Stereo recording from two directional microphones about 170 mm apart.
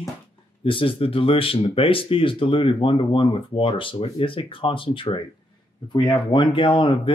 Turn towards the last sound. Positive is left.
turn(degrees=30)  # may be behind; listen again after turning